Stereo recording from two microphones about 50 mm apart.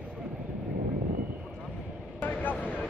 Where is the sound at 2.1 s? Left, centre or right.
Left.